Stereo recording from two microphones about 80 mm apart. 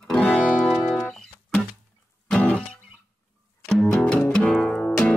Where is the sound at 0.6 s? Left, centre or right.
Centre.